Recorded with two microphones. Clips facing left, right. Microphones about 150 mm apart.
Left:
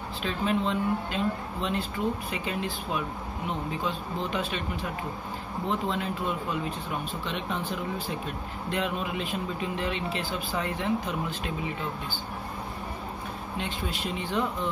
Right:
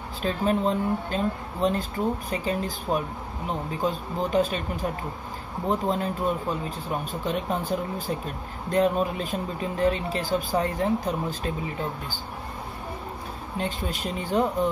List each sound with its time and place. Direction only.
0.2 s speech: 40° right (ahead or behind)
13.6 s speech: 45° right (ahead or behind)